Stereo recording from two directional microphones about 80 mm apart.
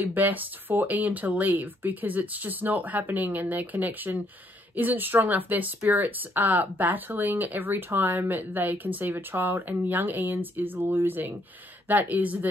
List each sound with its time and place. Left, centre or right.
0.0 s speech: right